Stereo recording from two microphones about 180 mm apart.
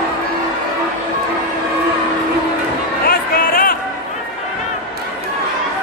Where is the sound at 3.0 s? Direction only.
50° left (ahead or behind).